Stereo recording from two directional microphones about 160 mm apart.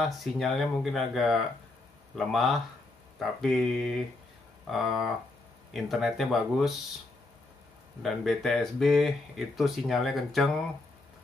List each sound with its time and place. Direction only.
0.0 s speech: centre (ahead or behind)
8.0 s speech: centre (ahead or behind)